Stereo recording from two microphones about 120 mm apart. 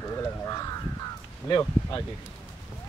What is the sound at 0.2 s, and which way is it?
Crow, 25° left (ahead or behind).